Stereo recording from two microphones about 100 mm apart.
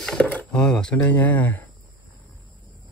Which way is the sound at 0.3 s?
15° left (ahead or behind).